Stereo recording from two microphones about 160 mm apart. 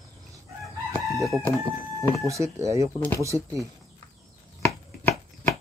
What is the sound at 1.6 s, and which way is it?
Speech, 20° right (ahead or behind).